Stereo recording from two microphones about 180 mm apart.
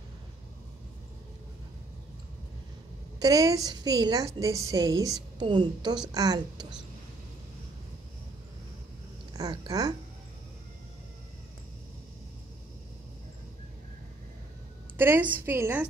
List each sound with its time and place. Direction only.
3.2 s a woman's voice: 20° right (ahead or behind)
9.3 s speech: 20° right (ahead or behind)
15.0 s a woman's voice: 10° right (ahead or behind)